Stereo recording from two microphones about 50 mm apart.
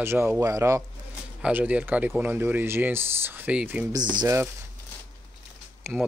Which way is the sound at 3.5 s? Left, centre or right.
Right.